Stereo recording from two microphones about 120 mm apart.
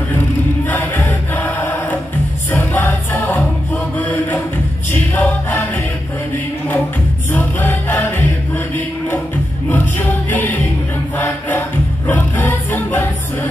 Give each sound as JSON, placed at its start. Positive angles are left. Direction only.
{"t": 0.7, "sound": "choir", "side_deg": 15}
{"t": 2.9, "sound": "music", "side_deg": 20}
{"t": 7.3, "sound": "music", "side_deg": 15}
{"t": 9.7, "sound": "music", "side_deg": 15}